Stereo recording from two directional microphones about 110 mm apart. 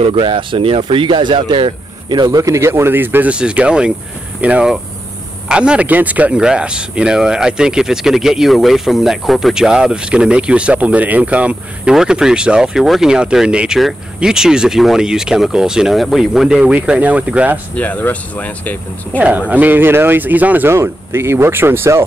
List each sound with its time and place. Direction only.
0.0 s speech: 55° right (ahead or behind); by 17.6 s 10° right (ahead or behind)
17.7 s speech: 15° left (ahead or behind)
19.1 s speech: 15° right (ahead or behind)